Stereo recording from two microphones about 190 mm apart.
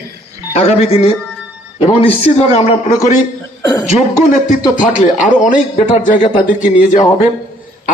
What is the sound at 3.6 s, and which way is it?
Speech, 20° left (ahead or behind).